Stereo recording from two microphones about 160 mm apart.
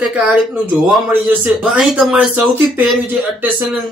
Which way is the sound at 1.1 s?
10° right (ahead or behind).